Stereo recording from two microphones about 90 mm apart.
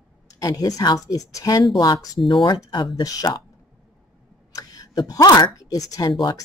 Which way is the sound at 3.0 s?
45° left (ahead or behind).